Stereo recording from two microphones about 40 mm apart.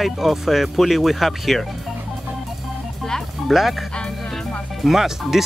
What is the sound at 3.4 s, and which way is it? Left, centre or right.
Speech, centre.